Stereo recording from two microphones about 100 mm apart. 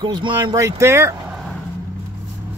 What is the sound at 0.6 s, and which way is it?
Speech, 30° right (ahead or behind).